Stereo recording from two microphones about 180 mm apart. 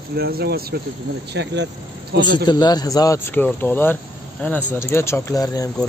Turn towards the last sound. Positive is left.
turn(degrees=20)  # may be behind; listen again after turning